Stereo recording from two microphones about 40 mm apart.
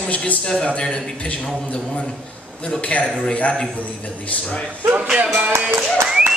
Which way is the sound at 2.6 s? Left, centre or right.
Left.